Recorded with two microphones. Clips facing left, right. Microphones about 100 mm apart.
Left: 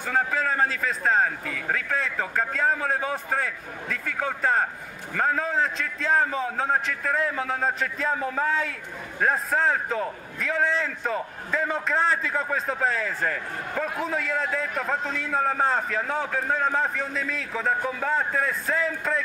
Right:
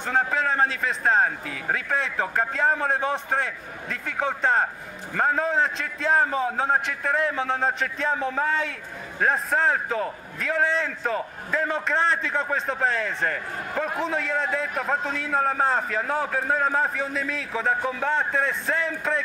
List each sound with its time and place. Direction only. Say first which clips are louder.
0.4 s a man's voice: right 1 dB; centre (ahead or behind)
4.2 s a man's voice: right 3 dB; 20° right (ahead or behind)
5.1 s a man's voice: right 2 dB; 10° right (ahead or behind)